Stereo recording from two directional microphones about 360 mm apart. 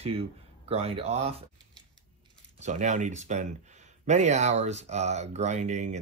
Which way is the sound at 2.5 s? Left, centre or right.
Centre.